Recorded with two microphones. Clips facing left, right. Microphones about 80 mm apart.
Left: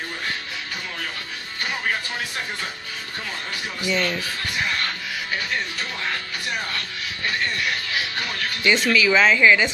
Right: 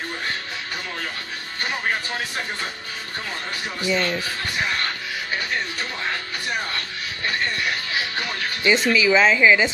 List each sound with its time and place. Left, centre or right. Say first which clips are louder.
3.9 s speech: right 1 dB; centre
8.6 s speech: right 1 dB; right